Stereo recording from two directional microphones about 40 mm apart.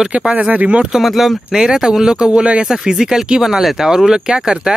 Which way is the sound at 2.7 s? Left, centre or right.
Centre.